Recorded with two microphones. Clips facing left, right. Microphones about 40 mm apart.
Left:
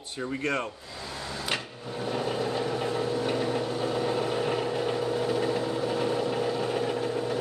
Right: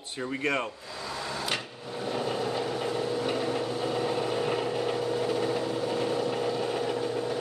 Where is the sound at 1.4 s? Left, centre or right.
Centre.